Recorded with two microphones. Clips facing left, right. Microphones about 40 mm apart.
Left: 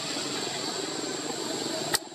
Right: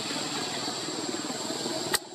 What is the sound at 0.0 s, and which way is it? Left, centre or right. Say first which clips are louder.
Vehicle: even; centre.